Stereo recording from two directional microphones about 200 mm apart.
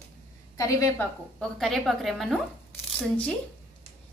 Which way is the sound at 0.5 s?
15° left (ahead or behind).